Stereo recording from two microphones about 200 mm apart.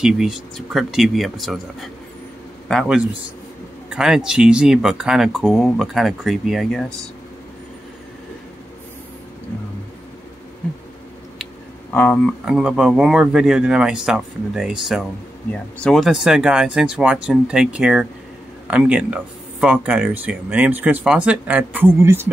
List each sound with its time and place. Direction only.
0.0 s speech: centre (ahead or behind)
11.9 s speech: 10° left (ahead or behind)
12.4 s speech: 5° right (ahead or behind)